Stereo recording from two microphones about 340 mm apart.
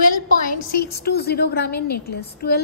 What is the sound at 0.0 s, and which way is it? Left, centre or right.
A woman's voice, left.